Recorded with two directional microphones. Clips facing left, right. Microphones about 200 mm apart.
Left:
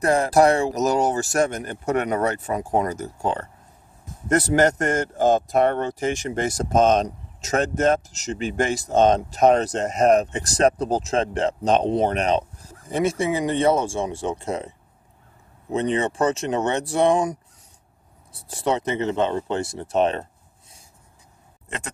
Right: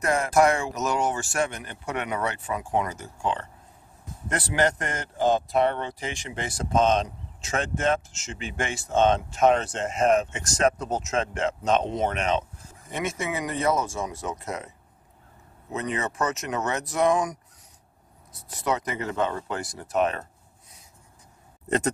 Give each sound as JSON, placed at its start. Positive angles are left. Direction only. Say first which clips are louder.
{"t": 0.0, "sound": "speech", "louder": "left 4 dB", "side_deg": 35}
{"t": 15.7, "sound": "speech", "louder": "left 7 dB", "side_deg": 30}
{"t": 21.6, "sound": "a sound", "louder": "right 10 dB", "side_deg": -40}